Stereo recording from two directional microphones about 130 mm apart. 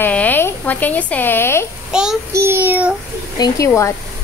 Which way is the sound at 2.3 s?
20° right (ahead or behind).